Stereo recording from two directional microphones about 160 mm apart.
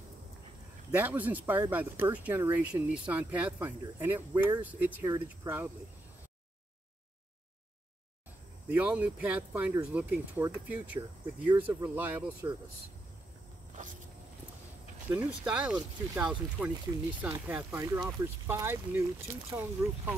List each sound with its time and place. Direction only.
0.9 s speech: 10° right (ahead or behind)
8.6 s speech: 10° right (ahead or behind)
13.8 s walk: 50° right (ahead or behind)
15.0 s speech: 10° right (ahead or behind)